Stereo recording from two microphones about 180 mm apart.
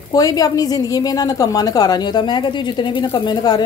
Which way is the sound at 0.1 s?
20° left (ahead or behind).